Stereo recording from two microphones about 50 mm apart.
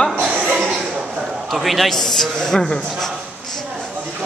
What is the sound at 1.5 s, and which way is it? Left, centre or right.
A man's voice, centre.